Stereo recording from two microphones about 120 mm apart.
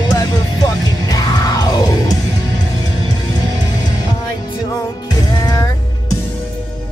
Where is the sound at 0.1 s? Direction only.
35° left (ahead or behind).